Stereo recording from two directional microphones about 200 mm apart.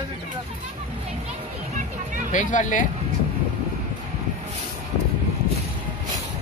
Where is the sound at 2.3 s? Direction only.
40° left (ahead or behind).